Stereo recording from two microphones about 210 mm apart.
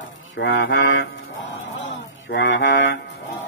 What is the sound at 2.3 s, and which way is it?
Mantra, 60° left (ahead or behind).